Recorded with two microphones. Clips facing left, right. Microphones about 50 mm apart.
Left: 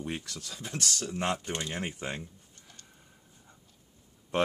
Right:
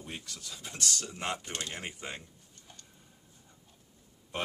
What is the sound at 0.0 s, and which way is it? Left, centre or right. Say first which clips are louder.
Speech: left 6 dB; left.